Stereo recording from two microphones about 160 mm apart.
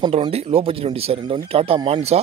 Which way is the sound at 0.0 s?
35° right (ahead or behind).